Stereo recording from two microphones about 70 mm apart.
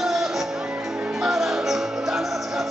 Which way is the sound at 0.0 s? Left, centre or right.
Centre.